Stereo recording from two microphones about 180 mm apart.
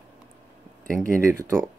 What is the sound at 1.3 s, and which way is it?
Speech, 15° right (ahead or behind).